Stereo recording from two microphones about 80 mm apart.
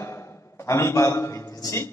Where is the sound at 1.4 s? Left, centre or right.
Left.